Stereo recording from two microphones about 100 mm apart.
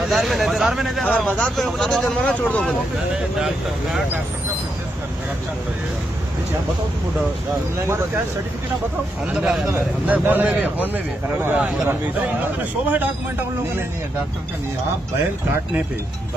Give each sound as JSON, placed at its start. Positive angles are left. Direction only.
{"t": 0.1, "sound": "speech", "side_deg": 0}
{"t": 1.0, "sound": "speech", "side_deg": 15}
{"t": 1.4, "sound": "speech", "side_deg": 5}
{"t": 3.3, "sound": "speech", "side_deg": -5}
{"t": 9.7, "sound": "a man's voice", "side_deg": -15}